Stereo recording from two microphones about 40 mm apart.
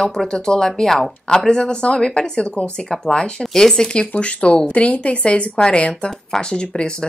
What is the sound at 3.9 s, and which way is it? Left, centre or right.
A woman's voice, left.